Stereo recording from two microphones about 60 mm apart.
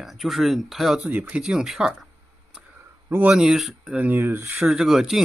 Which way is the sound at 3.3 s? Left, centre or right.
Centre.